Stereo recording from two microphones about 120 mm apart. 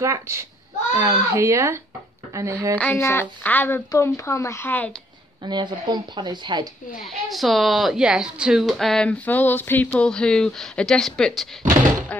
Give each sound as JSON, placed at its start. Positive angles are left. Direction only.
{"t": 0.0, "sound": "speech", "side_deg": -25}
{"t": 2.8, "sound": "speech", "side_deg": 20}
{"t": 5.4, "sound": "speech", "side_deg": -40}
{"t": 7.0, "sound": "speech", "side_deg": 0}